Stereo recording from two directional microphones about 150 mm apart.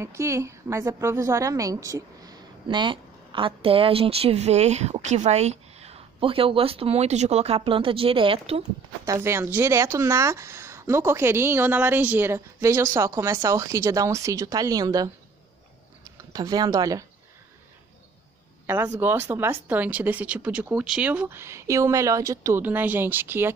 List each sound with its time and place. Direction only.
0.0 s a woman's voice: 20° right (ahead or behind); by 8.6 s 40° right (ahead or behind)
9.0 s speech: 20° right (ahead or behind)
18.9 s speech: 15° right (ahead or behind)